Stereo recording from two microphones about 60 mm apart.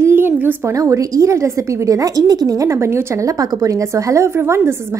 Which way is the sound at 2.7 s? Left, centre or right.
Right.